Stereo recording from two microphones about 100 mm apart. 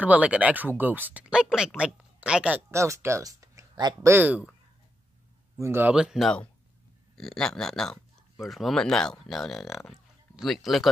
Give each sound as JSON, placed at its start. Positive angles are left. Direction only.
{"t": 0.0, "sound": "speech", "side_deg": -15}
{"t": 2.7, "sound": "speech", "side_deg": -30}
{"t": 4.0, "sound": "speech", "side_deg": -20}
{"t": 5.6, "sound": "speech", "side_deg": -20}
{"t": 5.9, "sound": "speech", "side_deg": -5}
{"t": 7.2, "sound": "speech", "side_deg": 5}